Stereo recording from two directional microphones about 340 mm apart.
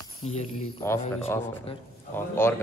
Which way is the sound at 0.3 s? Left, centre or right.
Centre.